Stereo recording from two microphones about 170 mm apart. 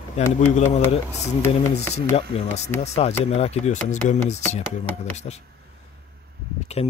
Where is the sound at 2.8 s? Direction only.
40° left (ahead or behind).